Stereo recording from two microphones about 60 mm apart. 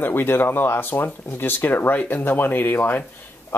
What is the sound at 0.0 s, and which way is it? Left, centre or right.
Speech, left.